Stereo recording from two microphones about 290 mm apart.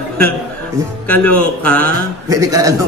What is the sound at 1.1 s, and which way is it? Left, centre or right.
Speech, centre.